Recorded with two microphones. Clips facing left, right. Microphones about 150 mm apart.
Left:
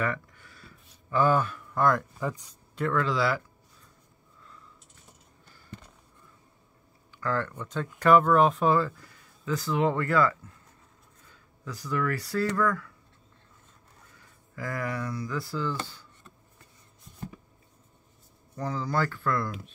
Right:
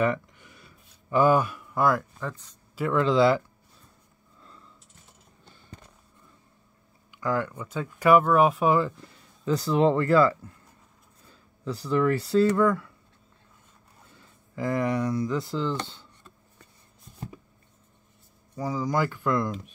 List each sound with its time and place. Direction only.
0.0 s a sound: 20° right (ahead or behind)
2.1 s speech: 10° left (ahead or behind)
2.9 s speech: 20° right (ahead or behind)
7.1 s speech: 15° right (ahead or behind)
14.1 s speech: 25° right (ahead or behind)
18.6 s speech: 10° right (ahead or behind)